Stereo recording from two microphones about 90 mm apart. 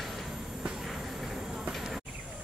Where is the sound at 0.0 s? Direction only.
Centre (ahead or behind).